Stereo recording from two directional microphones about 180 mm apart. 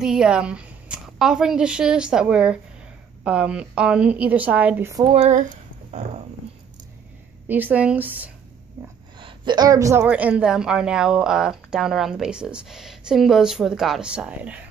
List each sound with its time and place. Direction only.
0.0 s a woman's voice: 5° right (ahead or behind)
5.0 s speech: 35° right (ahead or behind)
7.4 s a woman's voice: 10° right (ahead or behind)
9.2 s a woman's voice: 25° right (ahead or behind); by 14.6 s 5° right (ahead or behind)